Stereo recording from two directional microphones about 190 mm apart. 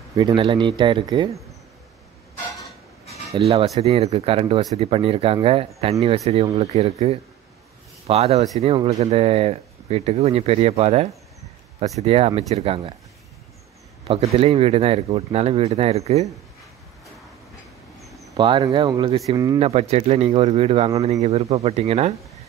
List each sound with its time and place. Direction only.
0.1 s speech: 25° right (ahead or behind)
3.3 s speech: 30° right (ahead or behind)
14.0 s speech: 30° right (ahead or behind)
18.3 s speech: 25° right (ahead or behind)
19.6 s speech: 35° right (ahead or behind)